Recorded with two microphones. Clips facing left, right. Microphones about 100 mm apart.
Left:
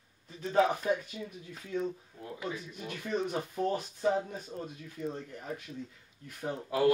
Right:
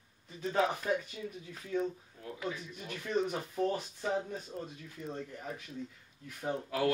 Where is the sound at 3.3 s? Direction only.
Centre (ahead or behind).